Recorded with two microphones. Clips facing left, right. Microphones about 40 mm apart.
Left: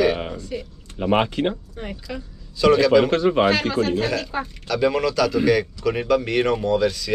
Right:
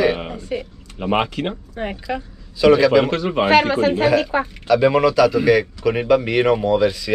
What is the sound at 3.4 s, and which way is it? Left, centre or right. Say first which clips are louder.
Speech: right 4 dB; right.